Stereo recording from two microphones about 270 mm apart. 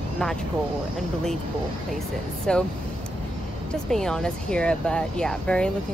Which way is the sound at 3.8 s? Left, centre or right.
Centre.